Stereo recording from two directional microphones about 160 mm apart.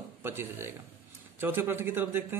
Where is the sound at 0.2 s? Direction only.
15° right (ahead or behind).